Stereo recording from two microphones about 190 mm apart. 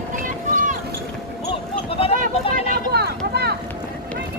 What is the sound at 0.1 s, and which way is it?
Vehicle, 45° right (ahead or behind).